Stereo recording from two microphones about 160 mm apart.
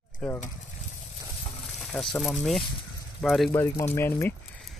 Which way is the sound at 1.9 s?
5° left (ahead or behind).